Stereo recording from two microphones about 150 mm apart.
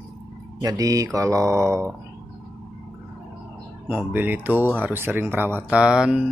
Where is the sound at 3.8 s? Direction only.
15° right (ahead or behind).